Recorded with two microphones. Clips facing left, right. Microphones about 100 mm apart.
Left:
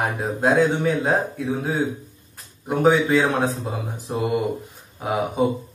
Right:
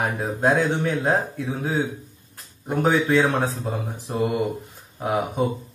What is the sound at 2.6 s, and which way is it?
Speech, 10° left (ahead or behind).